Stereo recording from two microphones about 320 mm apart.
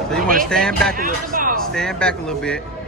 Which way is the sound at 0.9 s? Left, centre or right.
Right.